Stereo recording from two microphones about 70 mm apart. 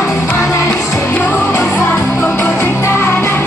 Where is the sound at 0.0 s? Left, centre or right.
Left.